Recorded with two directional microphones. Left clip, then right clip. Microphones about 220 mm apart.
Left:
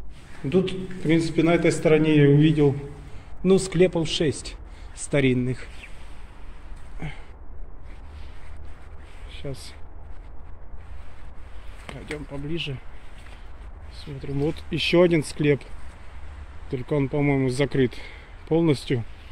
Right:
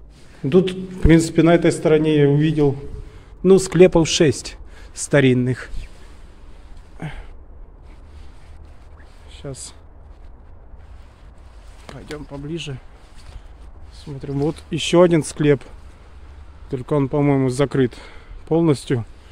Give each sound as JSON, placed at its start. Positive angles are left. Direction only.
{"t": 0.5, "sound": "speech", "side_deg": -40}
{"t": 3.4, "sound": "speech", "side_deg": -35}
{"t": 7.0, "sound": "a sound", "side_deg": -25}
{"t": 9.3, "sound": "speech", "side_deg": -15}
{"t": 11.8, "sound": "speech", "side_deg": -20}
{"t": 14.0, "sound": "speech", "side_deg": -30}